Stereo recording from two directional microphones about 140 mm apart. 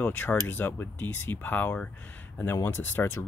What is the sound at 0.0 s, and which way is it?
Speech, 10° left (ahead or behind).